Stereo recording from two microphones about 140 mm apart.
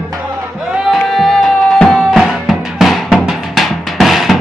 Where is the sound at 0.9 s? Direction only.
Centre (ahead or behind).